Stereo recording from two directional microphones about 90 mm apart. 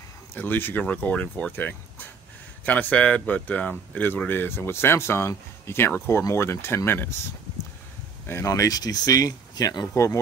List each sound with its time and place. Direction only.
0.3 s speech: 20° left (ahead or behind)
8.3 s speech: 35° left (ahead or behind)